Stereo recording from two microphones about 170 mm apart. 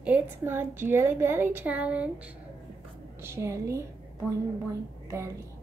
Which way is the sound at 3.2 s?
15° right (ahead or behind).